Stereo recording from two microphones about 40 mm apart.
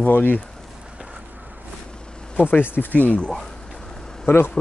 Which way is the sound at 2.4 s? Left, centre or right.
Left.